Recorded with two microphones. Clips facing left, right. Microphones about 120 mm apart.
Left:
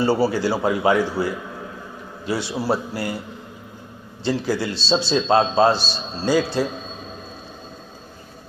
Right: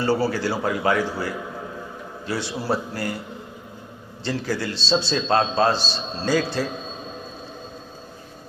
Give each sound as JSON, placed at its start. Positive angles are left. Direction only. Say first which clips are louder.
{"t": 0.0, "sound": "speech", "louder": "left 3 dB", "side_deg": 15}
{"t": 4.2, "sound": "speech", "louder": "left 4 dB", "side_deg": 15}